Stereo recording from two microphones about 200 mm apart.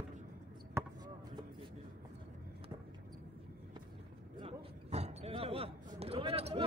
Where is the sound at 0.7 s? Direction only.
20° right (ahead or behind).